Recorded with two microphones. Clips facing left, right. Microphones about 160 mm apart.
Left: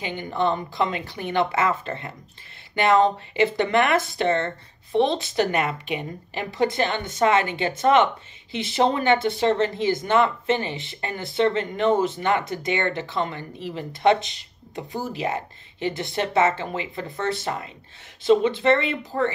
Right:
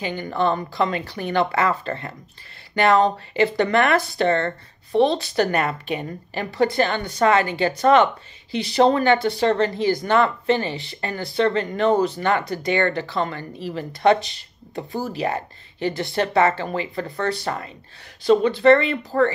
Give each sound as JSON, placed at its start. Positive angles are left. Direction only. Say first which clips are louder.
{"t": 0.0, "sound": "a woman's voice", "louder": "right 2 dB", "side_deg": 20}